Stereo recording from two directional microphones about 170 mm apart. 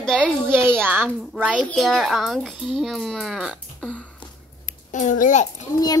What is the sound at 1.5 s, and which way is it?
A child's voice, 5° left (ahead or behind).